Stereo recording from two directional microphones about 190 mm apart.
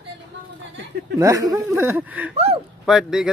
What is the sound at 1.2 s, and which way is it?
Speech, 15° right (ahead or behind).